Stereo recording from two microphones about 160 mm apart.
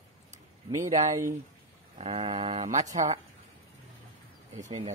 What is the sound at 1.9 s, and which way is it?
Speech, 35° right (ahead or behind).